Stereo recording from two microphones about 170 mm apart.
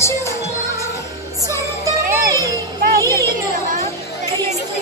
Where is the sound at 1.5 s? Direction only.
20° right (ahead or behind).